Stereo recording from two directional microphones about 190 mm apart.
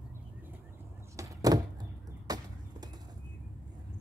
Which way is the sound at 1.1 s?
20° right (ahead or behind).